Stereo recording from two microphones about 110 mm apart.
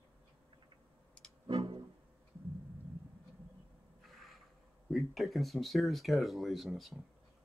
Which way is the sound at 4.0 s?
Centre (ahead or behind).